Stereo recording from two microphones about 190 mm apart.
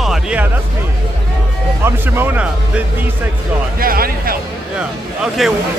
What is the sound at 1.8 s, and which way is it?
Speech, 10° right (ahead or behind).